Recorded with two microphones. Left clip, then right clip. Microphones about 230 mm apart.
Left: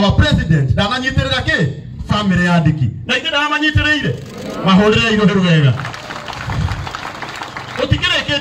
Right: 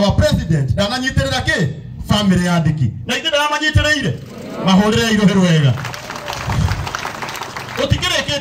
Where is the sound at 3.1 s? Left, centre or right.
Right.